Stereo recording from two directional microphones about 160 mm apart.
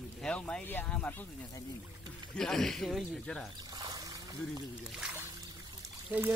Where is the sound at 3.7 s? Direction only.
25° right (ahead or behind).